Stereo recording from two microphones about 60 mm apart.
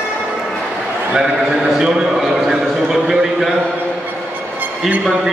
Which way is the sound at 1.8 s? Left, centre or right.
Centre.